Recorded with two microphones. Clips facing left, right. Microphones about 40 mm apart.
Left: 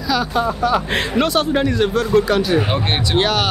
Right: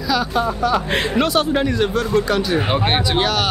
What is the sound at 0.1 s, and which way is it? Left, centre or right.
Speech, centre.